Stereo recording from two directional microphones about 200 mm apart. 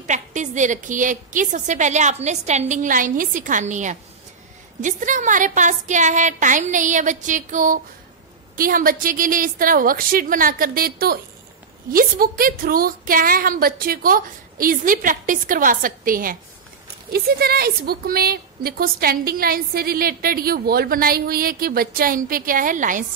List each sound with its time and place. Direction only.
0.0 s a woman's voice: 35° right (ahead or behind)